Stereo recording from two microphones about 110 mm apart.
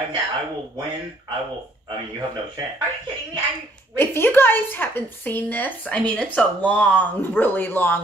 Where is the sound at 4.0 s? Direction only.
20° left (ahead or behind).